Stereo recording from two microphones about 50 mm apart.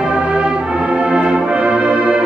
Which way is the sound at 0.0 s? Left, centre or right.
Centre.